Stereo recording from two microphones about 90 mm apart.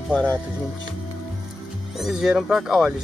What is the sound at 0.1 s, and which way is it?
Speech, 15° left (ahead or behind).